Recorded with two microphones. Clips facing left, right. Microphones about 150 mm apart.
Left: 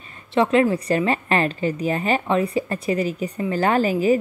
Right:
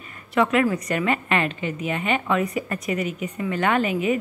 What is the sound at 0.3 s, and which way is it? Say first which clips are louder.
A woman's voice: left 3 dB; 30° left (ahead or behind).